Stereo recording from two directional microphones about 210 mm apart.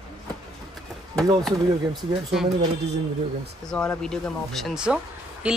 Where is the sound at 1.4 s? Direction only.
Centre (ahead or behind).